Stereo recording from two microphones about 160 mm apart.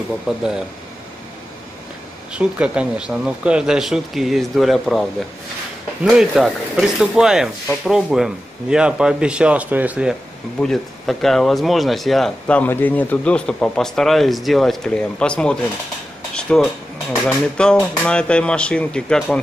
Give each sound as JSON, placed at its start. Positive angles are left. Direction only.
{"t": 2.3, "sound": "speech", "side_deg": -5}
{"t": 6.0, "sound": "speech", "side_deg": -5}
{"t": 10.6, "sound": "speech", "side_deg": 5}